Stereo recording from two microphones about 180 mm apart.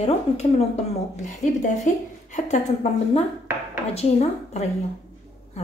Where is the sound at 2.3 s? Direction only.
40° left (ahead or behind).